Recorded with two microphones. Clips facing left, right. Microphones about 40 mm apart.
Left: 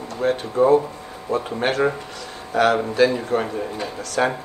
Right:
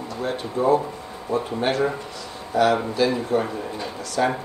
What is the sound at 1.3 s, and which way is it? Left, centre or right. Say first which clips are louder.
Speech: left 1 dB; left.